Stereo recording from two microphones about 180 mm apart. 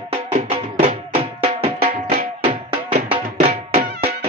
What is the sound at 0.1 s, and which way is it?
Music, 30° right (ahead or behind).